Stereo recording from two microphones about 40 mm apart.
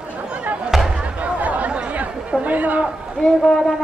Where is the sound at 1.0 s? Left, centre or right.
Right.